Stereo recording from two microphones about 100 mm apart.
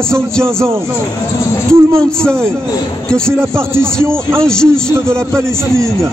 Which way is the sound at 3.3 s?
25° right (ahead or behind).